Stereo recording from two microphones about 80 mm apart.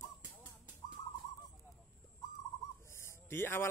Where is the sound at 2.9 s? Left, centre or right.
Left.